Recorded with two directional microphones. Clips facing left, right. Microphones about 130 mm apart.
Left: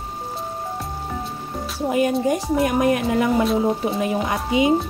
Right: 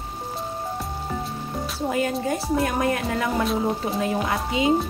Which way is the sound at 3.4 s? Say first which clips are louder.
Left 4 dB; centre (ahead or behind).